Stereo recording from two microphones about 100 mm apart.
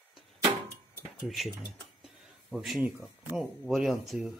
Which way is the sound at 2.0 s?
Centre (ahead or behind).